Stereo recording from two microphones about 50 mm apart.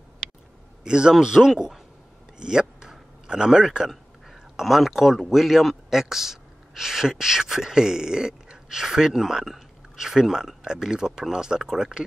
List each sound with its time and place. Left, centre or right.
0.8 s a man's voice: centre
2.8 s a sound: centre
3.9 s speech: centre